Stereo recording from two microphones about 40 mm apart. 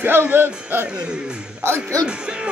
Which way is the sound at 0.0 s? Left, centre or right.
Right.